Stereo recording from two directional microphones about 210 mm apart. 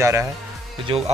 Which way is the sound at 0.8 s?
30° right (ahead or behind).